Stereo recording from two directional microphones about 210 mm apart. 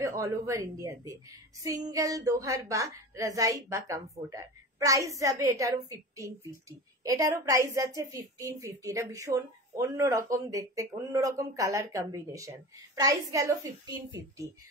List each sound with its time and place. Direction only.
0.0 s a woman's voice: 15° right (ahead or behind)